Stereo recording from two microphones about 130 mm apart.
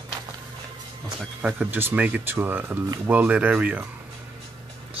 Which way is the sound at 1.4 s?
10° right (ahead or behind).